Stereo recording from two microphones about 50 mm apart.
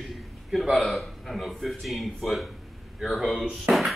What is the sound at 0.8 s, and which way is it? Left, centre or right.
A man's voice, centre.